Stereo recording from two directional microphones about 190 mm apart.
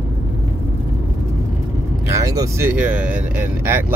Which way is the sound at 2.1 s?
15° right (ahead or behind).